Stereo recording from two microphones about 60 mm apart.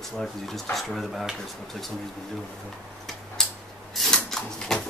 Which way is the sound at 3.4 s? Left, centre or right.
Centre.